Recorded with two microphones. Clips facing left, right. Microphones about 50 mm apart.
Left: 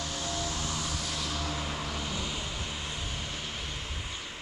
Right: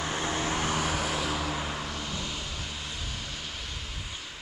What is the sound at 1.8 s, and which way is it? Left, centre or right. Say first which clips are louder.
Vehicle: even; centre.